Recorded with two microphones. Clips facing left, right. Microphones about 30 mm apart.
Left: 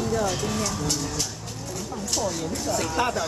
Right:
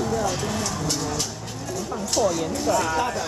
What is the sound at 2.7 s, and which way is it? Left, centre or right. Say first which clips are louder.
Speech: right 6 dB; right.